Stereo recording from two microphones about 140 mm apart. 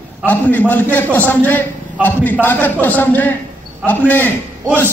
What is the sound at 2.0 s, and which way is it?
Speech, 10° right (ahead or behind).